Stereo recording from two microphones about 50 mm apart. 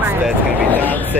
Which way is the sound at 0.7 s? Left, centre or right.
Left.